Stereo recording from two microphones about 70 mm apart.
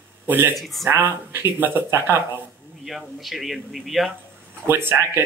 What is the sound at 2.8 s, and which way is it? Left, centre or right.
Speech, centre.